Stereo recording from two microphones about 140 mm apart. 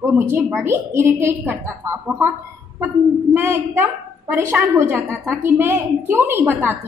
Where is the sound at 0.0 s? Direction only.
15° right (ahead or behind).